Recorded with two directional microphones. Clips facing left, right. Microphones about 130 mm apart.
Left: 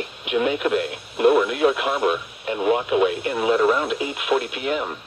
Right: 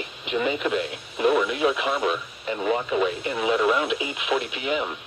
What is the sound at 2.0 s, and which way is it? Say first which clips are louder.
Speech: left 4 dB; 50° left (ahead or behind).